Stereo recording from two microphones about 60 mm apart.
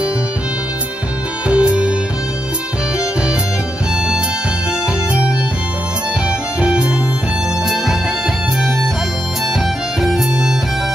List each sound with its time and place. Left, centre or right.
1.5 s music: centre
6.6 s music: centre
10.0 s music: centre